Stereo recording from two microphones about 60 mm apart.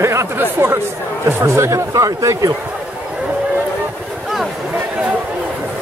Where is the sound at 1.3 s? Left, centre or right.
Right.